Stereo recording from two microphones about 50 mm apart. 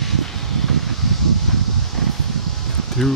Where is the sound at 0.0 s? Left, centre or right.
Centre.